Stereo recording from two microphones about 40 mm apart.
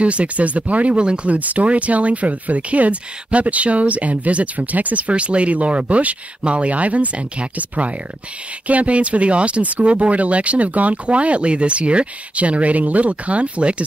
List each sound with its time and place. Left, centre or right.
0.0 s speech: right